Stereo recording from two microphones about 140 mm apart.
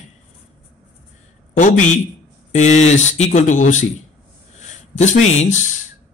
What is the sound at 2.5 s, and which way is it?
Speech, 55° left (ahead or behind).